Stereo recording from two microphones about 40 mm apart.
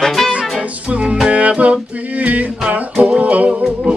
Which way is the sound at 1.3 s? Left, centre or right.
Right.